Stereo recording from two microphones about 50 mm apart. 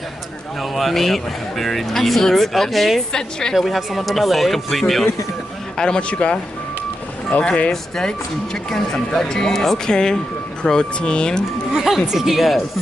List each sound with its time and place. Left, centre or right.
0.6 s speech: centre
3.1 s speech: centre
3.5 s speech: centre
5.8 s speech: centre
8.6 s speech: centre
11.7 s speech: centre